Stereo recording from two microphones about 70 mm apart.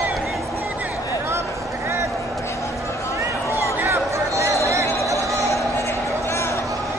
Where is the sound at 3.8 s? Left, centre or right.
Right.